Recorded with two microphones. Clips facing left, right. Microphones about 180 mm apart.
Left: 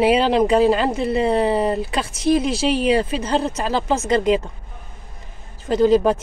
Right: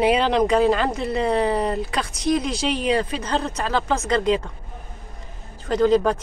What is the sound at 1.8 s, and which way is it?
Speech, 30° left (ahead or behind).